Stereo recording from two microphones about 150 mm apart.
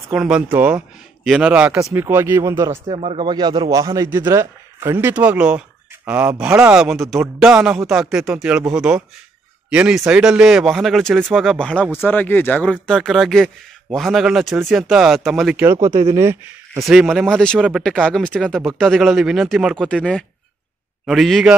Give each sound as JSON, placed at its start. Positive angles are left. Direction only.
{"t": 0.1, "sound": "speech", "side_deg": -5}
{"t": 2.9, "sound": "speech", "side_deg": -40}
{"t": 3.3, "sound": "speech", "side_deg": -30}
{"t": 15.6, "sound": "speech", "side_deg": -20}
{"t": 16.8, "sound": "speech", "side_deg": -5}